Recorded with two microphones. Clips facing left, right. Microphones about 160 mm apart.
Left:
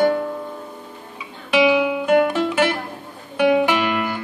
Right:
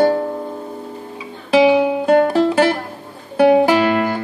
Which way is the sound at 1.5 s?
35° right (ahead or behind).